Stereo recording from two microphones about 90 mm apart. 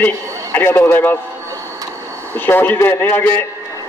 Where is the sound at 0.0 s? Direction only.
25° left (ahead or behind).